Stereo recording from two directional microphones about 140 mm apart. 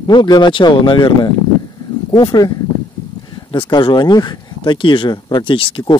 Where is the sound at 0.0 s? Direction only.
30° left (ahead or behind).